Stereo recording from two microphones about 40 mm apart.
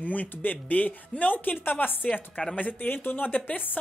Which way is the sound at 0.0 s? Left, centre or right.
Left.